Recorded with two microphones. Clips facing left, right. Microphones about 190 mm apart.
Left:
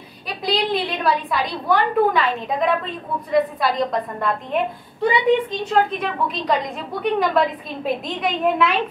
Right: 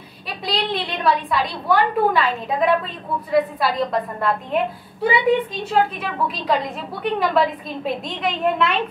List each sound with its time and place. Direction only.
0.5 s a woman's voice: centre (ahead or behind)
5.7 s a woman's voice: centre (ahead or behind)